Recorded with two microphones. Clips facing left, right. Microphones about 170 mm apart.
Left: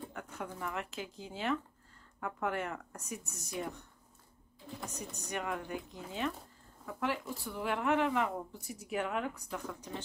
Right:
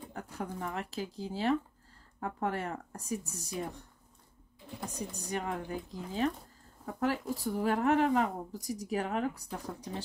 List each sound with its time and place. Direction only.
0.1 s speech: 35° right (ahead or behind)
4.8 s speech: 30° right (ahead or behind)